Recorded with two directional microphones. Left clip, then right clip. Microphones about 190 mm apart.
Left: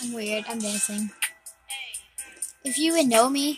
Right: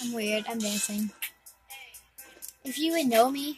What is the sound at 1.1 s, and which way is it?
Music, 40° left (ahead or behind).